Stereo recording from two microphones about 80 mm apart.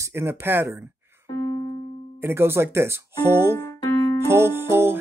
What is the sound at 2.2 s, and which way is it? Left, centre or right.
Speech, right.